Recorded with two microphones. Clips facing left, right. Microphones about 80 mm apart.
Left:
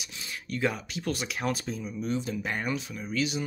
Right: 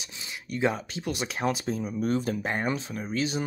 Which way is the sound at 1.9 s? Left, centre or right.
Right.